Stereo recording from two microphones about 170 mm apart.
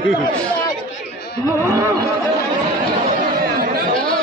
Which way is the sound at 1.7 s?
20° right (ahead or behind).